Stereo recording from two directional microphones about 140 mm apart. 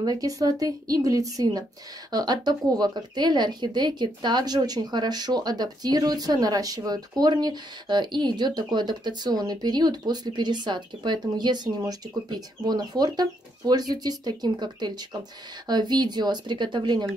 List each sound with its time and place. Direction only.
0.0 s a woman's voice: 25° right (ahead or behind)